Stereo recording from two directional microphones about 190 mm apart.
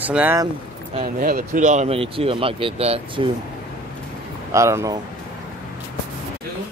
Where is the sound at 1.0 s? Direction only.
45° right (ahead or behind); by 3.3 s 30° right (ahead or behind).